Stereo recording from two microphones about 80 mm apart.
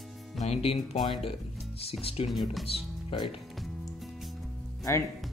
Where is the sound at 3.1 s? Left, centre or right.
Left.